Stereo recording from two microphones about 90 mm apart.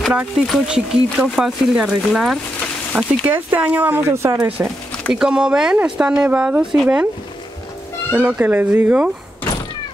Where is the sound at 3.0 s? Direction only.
20° right (ahead or behind).